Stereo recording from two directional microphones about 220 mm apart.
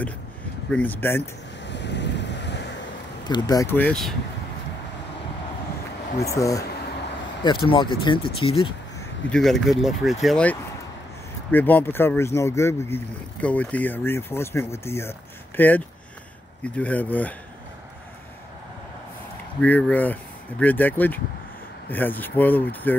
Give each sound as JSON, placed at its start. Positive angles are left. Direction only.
{"t": 0.7, "sound": "speech", "side_deg": 10}
{"t": 1.7, "sound": "wind", "side_deg": 50}
{"t": 3.3, "sound": "speech", "side_deg": 20}
{"t": 6.1, "sound": "speech", "side_deg": 15}
{"t": 9.3, "sound": "speech", "side_deg": 0}
{"t": 19.6, "sound": "speech", "side_deg": 5}